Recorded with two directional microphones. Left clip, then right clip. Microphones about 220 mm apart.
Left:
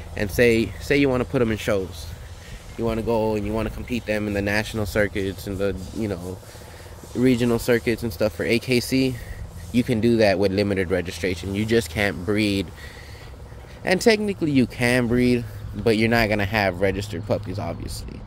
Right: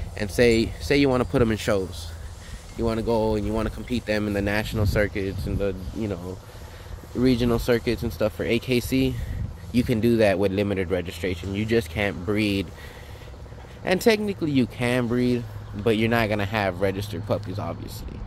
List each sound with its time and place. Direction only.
0.1 s speech: centre (ahead or behind)
7.2 s speech: 10° left (ahead or behind)
9.7 s speech: 10° left (ahead or behind)
13.8 s speech: 10° left (ahead or behind)